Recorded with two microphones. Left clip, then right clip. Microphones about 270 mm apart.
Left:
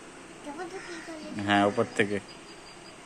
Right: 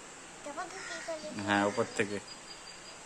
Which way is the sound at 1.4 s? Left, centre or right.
Centre.